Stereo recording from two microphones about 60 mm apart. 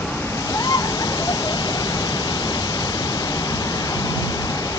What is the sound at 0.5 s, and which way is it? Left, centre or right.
Waterfall, left.